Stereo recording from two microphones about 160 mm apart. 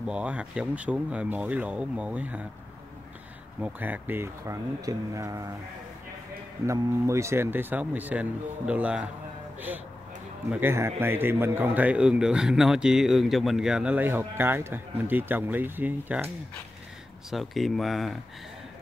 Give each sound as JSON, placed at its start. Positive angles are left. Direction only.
{"t": 0.0, "sound": "speech", "side_deg": -5}
{"t": 3.6, "sound": "speech", "side_deg": -10}
{"t": 6.6, "sound": "speech", "side_deg": -20}
{"t": 10.5, "sound": "speech", "side_deg": -15}
{"t": 17.3, "sound": "speech", "side_deg": 0}